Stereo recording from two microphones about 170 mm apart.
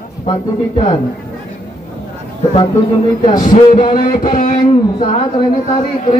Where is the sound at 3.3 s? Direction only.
50° left (ahead or behind).